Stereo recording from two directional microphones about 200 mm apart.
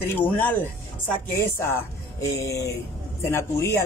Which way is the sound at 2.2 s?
15° left (ahead or behind).